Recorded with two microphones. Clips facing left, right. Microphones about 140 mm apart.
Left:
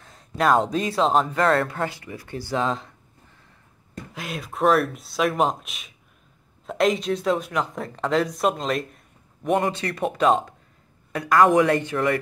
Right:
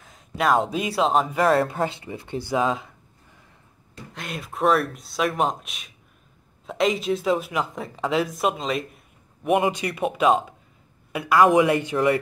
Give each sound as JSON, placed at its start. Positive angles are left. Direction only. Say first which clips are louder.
{"t": 0.0, "sound": "speech", "louder": "left 1 dB", "side_deg": 0}
{"t": 1.6, "sound": "speech", "louder": "right 2 dB", "side_deg": -20}
{"t": 2.5, "sound": "speech", "louder": "right 2 dB", "side_deg": -5}
{"t": 4.1, "sound": "speech", "louder": "left 1 dB", "side_deg": 0}